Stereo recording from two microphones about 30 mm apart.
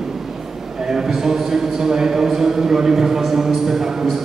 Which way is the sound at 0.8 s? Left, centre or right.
Centre.